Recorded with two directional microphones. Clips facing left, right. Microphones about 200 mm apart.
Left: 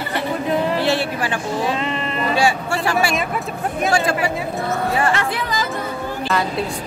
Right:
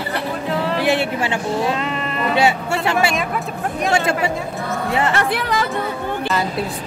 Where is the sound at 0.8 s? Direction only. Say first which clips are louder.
Right 1 dB; 20° right (ahead or behind).